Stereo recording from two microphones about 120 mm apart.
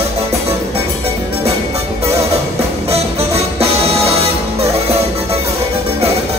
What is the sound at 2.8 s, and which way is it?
Music, 55° right (ahead or behind).